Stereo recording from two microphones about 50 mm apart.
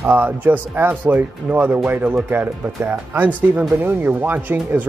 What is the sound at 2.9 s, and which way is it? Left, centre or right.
Speech, right.